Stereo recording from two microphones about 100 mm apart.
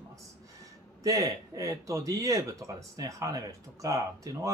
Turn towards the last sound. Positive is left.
turn(degrees=-35)  # may be behind; listen again after turning